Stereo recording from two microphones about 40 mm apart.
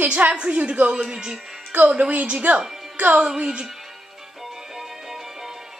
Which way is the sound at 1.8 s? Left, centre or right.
Right.